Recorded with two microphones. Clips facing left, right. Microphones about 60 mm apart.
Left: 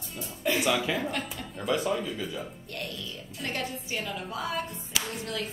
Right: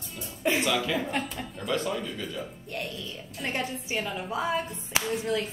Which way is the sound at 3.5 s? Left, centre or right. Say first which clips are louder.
Right 2 dB; right.